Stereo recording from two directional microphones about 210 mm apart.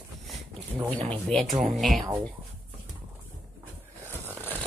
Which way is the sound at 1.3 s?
Centre (ahead or behind).